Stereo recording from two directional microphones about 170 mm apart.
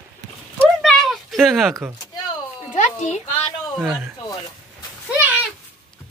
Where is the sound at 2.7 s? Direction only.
45° left (ahead or behind).